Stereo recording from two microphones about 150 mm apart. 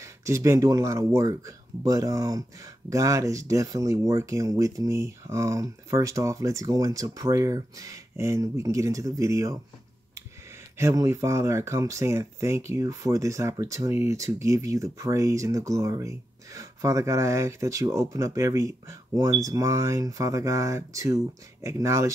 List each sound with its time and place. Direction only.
0.0 s speech: 20° right (ahead or behind)
10.8 s speech: 15° right (ahead or behind)